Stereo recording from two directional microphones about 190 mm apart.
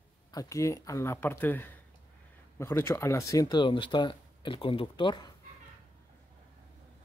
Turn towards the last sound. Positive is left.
turn(degrees=25)  # may be behind; listen again after turning